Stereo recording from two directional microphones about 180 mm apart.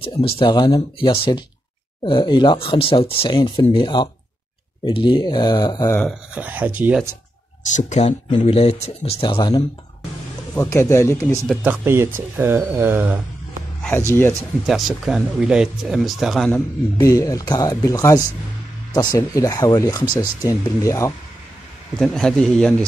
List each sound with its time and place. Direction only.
0.0 s speech: 30° left (ahead or behind)
6.3 s speech: 10° right (ahead or behind)
7.6 s speech: 40° left (ahead or behind)
10.5 s speech: 15° left (ahead or behind)
11.4 s speech: 10° right (ahead or behind)
13.9 s speech: 15° left (ahead or behind)
14.7 s speech: centre (ahead or behind)
16.5 s speech: 20° left (ahead or behind)
21.9 s speech: 5° left (ahead or behind)